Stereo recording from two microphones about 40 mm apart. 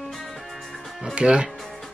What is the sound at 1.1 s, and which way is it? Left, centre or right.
Speech, right.